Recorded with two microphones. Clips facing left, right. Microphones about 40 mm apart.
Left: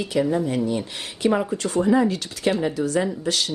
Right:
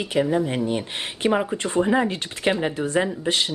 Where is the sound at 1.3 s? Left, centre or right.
Right.